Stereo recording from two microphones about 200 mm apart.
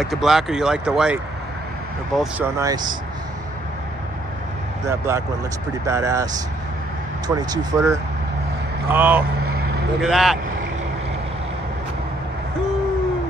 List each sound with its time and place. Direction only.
0.0 s speech: centre (ahead or behind); by 2.9 s 20° right (ahead or behind)
4.8 s speech: 15° right (ahead or behind)
7.2 s speech: 20° right (ahead or behind); by 10.4 s centre (ahead or behind)